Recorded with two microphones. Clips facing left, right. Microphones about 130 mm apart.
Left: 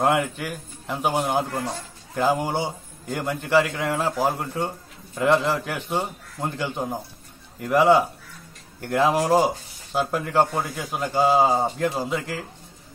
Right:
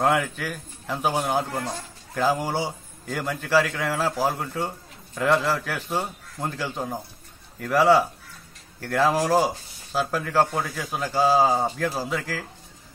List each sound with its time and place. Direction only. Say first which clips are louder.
0.0 s a man's voice: left 1 dB; 15° left (ahead or behind)